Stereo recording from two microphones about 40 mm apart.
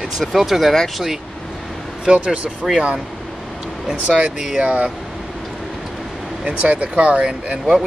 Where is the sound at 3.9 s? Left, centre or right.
Right.